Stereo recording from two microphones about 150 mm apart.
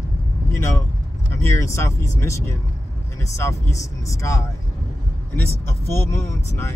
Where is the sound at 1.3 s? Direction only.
20° left (ahead or behind).